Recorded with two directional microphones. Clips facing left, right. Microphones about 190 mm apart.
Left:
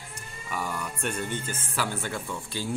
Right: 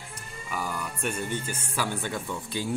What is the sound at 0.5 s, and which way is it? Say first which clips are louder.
Speech: even; 5° right (ahead or behind).